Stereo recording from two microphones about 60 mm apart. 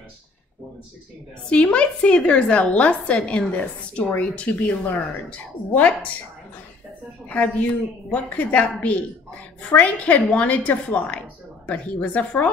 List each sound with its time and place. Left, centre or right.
1.5 s a woman's voice: centre
7.2 s a woman's voice: left